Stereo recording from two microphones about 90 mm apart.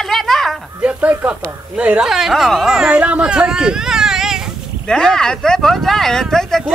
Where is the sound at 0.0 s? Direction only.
5° left (ahead or behind).